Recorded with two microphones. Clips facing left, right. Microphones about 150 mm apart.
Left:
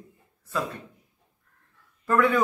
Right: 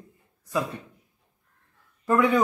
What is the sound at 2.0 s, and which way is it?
Speech, 15° right (ahead or behind).